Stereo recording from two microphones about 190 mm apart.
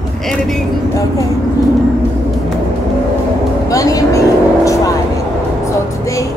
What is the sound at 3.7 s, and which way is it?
Vehicle, 20° left (ahead or behind).